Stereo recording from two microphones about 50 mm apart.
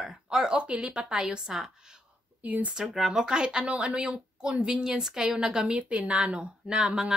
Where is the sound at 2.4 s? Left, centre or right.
Right.